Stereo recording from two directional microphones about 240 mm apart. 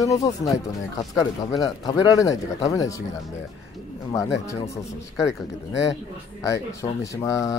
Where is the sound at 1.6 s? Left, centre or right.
Centre.